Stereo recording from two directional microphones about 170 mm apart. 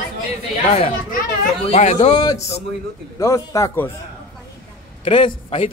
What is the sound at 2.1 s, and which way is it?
A man's voice, 25° left (ahead or behind).